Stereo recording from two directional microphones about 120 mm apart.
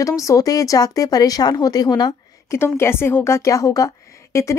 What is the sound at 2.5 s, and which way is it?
Speech, 20° left (ahead or behind).